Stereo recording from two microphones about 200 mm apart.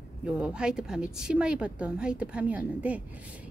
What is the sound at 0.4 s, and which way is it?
A woman's voice, 5° right (ahead or behind).